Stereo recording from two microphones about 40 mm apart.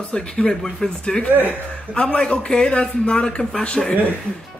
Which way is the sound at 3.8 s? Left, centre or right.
Centre.